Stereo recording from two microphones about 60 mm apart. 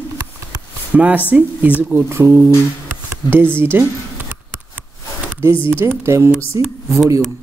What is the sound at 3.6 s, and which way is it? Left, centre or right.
Speech, right.